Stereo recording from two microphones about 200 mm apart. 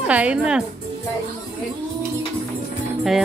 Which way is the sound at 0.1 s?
5° right (ahead or behind).